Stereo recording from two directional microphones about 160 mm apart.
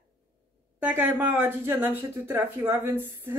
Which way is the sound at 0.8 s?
15° right (ahead or behind).